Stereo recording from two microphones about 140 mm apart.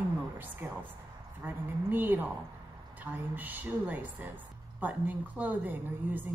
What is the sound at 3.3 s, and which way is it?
A woman's voice, 15° right (ahead or behind).